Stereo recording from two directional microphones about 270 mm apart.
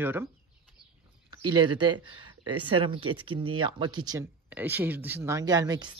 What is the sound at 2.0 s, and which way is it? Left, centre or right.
Speech, right.